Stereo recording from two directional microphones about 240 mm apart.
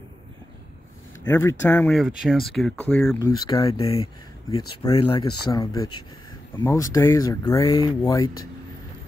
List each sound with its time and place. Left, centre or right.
1.2 s speech: centre
3.2 s speech: centre